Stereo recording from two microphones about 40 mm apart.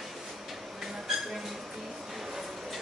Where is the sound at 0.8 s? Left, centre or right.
Centre.